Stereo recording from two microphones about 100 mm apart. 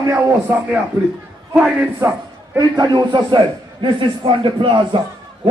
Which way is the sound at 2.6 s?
45° right (ahead or behind).